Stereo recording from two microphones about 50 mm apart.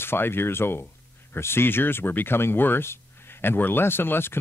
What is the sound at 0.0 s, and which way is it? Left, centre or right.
Speech, left.